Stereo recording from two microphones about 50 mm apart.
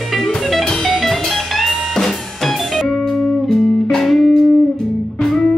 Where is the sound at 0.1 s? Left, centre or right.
Centre.